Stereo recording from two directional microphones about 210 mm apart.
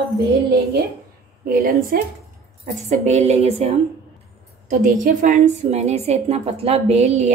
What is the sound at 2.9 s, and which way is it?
A woman's voice, 35° right (ahead or behind).